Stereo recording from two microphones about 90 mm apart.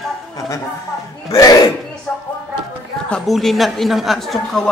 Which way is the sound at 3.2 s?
Centre (ahead or behind).